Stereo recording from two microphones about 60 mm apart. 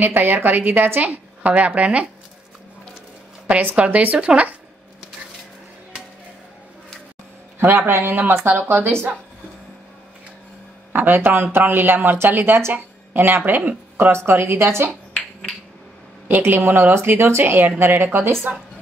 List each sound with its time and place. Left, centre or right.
0.0 s speech: right
3.4 s a woman's voice: right
7.6 s speech: right
10.9 s speech: right
16.3 s speech: right